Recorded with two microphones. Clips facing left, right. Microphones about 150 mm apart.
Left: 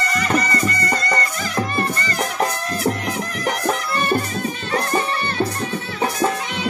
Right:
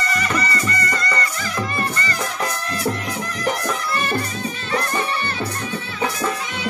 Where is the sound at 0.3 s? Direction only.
40° left (ahead or behind).